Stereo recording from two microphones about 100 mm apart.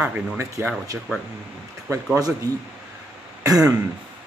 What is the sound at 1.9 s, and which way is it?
Speech, 30° right (ahead or behind).